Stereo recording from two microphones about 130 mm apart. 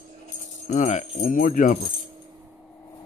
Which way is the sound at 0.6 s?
65° left (ahead or behind).